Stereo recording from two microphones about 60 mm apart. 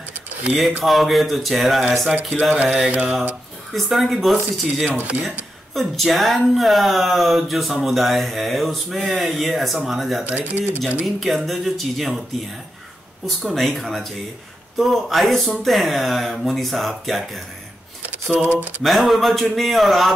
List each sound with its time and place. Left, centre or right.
0.8 s speech: centre
2.5 s speech: right
3.7 s speech: centre
4.8 s speech: right
5.8 s speech: centre
10.2 s speech: right
11.1 s speech: centre
13.4 s speech: centre
18.0 s speech: right
18.8 s speech: centre